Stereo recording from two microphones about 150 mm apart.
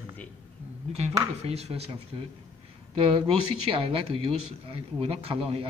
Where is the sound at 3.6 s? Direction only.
35° right (ahead or behind).